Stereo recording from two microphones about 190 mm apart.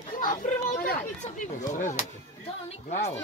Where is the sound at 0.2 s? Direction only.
45° left (ahead or behind).